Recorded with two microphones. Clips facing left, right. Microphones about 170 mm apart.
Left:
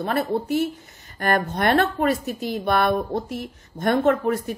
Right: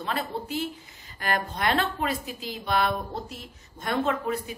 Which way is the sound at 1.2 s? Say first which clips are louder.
Left 6 dB; 50° left (ahead or behind).